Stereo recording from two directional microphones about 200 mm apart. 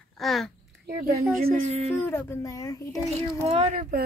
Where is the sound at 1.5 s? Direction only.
30° right (ahead or behind).